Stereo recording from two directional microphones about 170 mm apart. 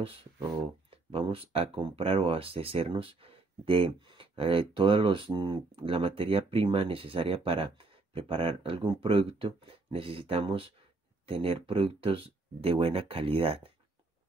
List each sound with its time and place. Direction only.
0.8 s speech: 30° right (ahead or behind)